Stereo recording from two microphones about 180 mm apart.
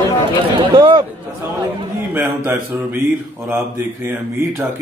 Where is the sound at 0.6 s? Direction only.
25° right (ahead or behind).